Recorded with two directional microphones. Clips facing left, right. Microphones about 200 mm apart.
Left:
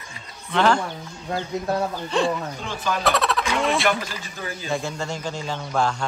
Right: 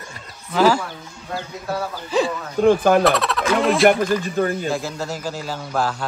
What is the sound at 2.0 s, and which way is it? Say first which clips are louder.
Speech: right 3 dB; centre (ahead or behind).